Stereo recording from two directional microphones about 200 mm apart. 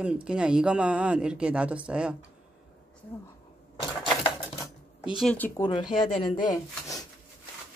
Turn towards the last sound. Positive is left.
turn(degrees=20)  # may be behind; listen again after turning